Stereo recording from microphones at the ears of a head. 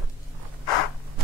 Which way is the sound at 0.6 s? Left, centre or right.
Left.